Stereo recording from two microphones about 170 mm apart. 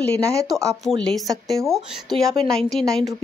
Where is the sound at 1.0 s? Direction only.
5° left (ahead or behind).